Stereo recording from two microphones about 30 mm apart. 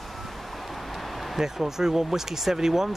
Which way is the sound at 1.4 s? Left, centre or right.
Centre.